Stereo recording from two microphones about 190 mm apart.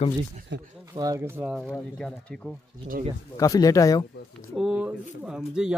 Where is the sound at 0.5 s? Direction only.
65° right (ahead or behind).